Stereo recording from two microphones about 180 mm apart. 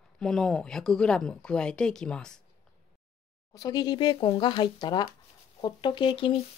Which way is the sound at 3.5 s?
20° left (ahead or behind).